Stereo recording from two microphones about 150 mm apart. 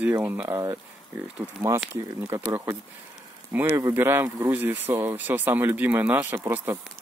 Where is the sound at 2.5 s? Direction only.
15° right (ahead or behind).